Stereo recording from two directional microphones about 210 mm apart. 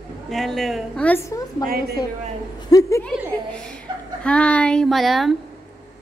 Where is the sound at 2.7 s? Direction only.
15° left (ahead or behind).